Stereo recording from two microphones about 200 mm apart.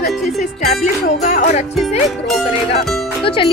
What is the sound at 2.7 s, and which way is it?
Speech, 25° left (ahead or behind).